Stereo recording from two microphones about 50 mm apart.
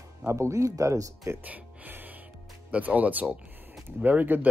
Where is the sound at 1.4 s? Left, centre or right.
Right.